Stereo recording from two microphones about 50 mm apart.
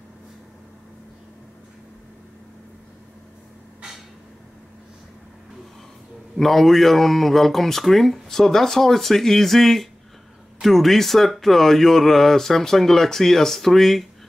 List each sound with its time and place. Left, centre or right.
6.3 s speech: centre